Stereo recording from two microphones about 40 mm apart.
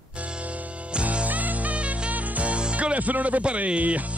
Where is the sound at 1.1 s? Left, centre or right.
Right.